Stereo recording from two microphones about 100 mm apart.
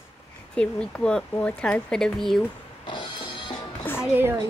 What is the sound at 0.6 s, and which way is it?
Speech, 10° left (ahead or behind).